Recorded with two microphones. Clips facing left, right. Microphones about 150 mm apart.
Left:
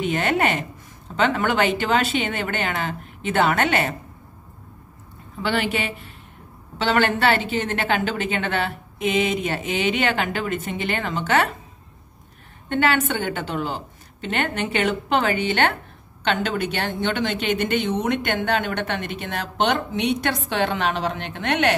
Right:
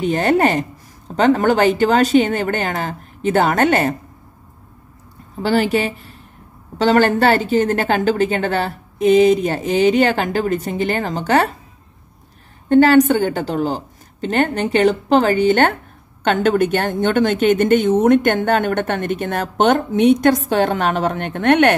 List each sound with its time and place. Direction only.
0.0 s a woman's voice: 40° right (ahead or behind)
5.4 s a woman's voice: 40° right (ahead or behind)
12.6 s a woman's voice: 40° right (ahead or behind); by 21.7 s 55° right (ahead or behind)